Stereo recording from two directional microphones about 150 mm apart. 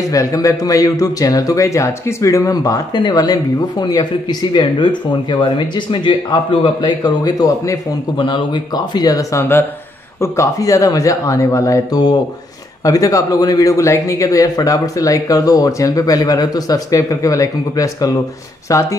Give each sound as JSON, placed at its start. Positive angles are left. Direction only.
{"t": 0.1, "sound": "speech", "side_deg": 20}